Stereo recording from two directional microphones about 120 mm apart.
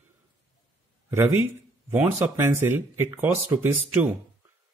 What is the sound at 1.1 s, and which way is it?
Speech, 20° right (ahead or behind).